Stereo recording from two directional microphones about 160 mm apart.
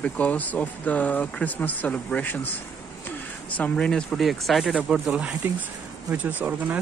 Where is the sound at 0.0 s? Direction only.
10° left (ahead or behind).